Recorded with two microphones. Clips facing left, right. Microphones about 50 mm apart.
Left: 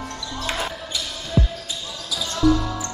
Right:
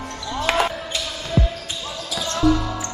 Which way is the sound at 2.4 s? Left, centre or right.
Right.